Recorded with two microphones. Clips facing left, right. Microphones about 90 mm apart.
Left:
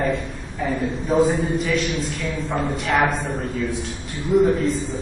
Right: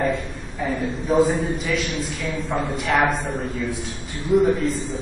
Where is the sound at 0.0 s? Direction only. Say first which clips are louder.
Even; centre (ahead or behind).